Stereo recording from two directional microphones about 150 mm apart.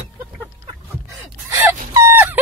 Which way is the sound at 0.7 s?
20° right (ahead or behind).